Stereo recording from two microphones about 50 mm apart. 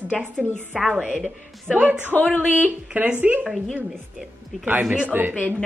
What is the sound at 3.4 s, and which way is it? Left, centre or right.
Speech, centre.